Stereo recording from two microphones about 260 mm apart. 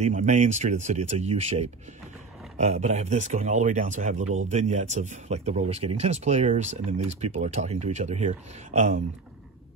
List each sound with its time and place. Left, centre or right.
0.0 s speech: right
4.2 s speech: right
4.5 s speech: right